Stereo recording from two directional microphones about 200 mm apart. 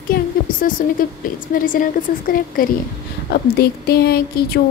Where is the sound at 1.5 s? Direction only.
45° left (ahead or behind).